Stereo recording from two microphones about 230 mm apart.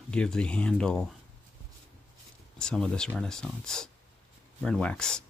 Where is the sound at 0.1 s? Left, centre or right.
Centre.